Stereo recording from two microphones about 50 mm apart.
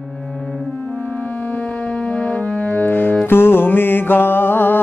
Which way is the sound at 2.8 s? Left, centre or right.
Left.